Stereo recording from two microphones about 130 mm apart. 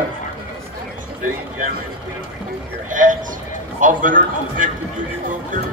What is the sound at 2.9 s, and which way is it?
A man's voice, 90° right.